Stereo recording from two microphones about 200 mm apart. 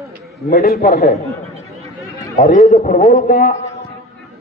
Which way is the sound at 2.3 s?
40° left (ahead or behind).